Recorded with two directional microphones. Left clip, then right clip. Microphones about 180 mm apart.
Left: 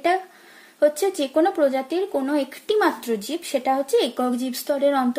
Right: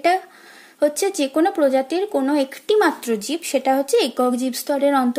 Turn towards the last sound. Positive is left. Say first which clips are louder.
# right 2 dB
turn(degrees=-30)  # may be behind; listen again after turning